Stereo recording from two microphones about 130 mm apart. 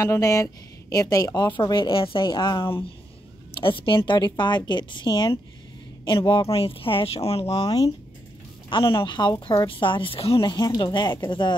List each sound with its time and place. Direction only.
0.0 s a woman's voice: 25° left (ahead or behind); by 7.5 s 50° left (ahead or behind)
7.5 s a woman's voice: 30° left (ahead or behind)
10.5 s a woman's voice: 30° left (ahead or behind)